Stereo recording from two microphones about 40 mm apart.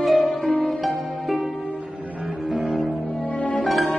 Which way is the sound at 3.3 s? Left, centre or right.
Left.